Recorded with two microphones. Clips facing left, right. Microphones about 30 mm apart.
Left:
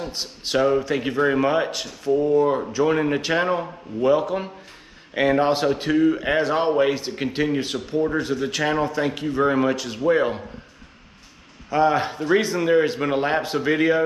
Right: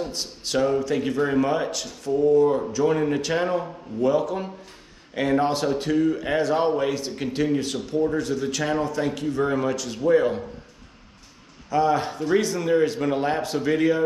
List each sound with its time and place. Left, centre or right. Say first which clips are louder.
0.0 s speech: even; left
11.7 s speech: left 2 dB; left